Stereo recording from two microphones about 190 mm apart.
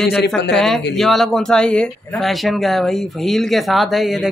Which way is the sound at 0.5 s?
Centre (ahead or behind).